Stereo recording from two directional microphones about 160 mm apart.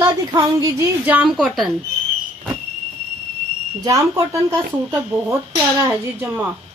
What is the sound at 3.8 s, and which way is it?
Speech, 20° right (ahead or behind).